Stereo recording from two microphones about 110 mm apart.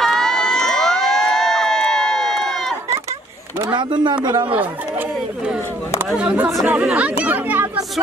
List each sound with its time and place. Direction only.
0.0 s crowd: 5° left (ahead or behind)
3.7 s speech: 45° right (ahead or behind)
6.0 s speech: 10° right (ahead or behind)